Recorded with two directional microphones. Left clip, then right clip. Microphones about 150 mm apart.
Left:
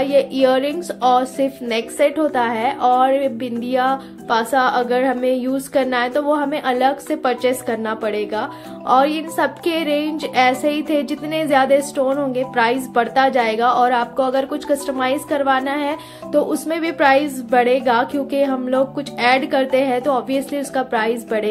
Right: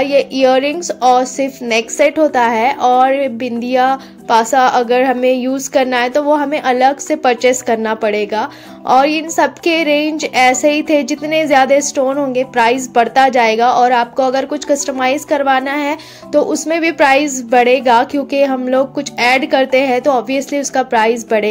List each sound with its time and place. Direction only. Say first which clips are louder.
0.0 s a woman's voice: right 4 dB; 30° right (ahead or behind)